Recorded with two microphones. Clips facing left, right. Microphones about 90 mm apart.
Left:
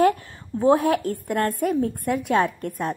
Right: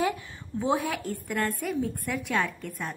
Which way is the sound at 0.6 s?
45° left (ahead or behind).